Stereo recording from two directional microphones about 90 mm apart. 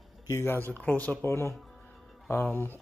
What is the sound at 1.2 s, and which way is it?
Speech, 30° left (ahead or behind).